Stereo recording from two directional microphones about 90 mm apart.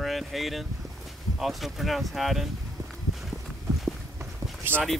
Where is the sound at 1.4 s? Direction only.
Centre (ahead or behind).